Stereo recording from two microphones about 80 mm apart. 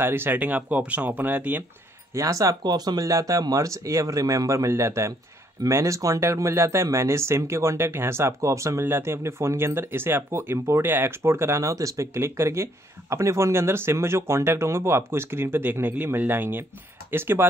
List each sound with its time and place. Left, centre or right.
0.0 s speech: right
2.1 s speech: right
2.6 s speech: right